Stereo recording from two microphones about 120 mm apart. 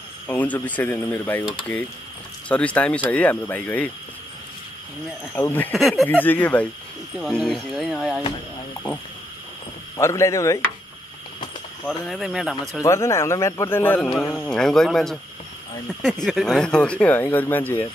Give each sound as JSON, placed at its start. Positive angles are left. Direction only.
{"t": 0.3, "sound": "speech", "side_deg": 15}
{"t": 5.4, "sound": "speech", "side_deg": 10}
{"t": 5.7, "sound": "speech", "side_deg": 0}
{"t": 6.0, "sound": "speech", "side_deg": 15}
{"t": 7.4, "sound": "speech", "side_deg": 0}
{"t": 9.9, "sound": "a man's voice", "side_deg": 25}
{"t": 11.8, "sound": "speech", "side_deg": 0}
{"t": 12.8, "sound": "a man's voice", "side_deg": 25}